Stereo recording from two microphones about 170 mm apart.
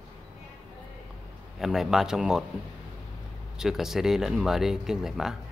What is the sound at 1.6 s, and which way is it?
Speech, centre (ahead or behind).